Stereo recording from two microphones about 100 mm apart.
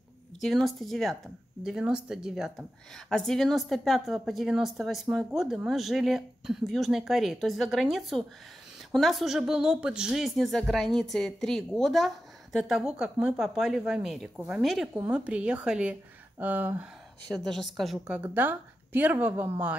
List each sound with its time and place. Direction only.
0.4 s a woman's voice: centre (ahead or behind)
15.0 s speech: 10° right (ahead or behind)
17.5 s a woman's voice: centre (ahead or behind)
18.1 s a woman's voice: 15° right (ahead or behind)